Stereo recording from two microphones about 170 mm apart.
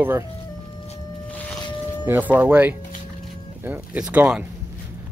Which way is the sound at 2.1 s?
10° right (ahead or behind).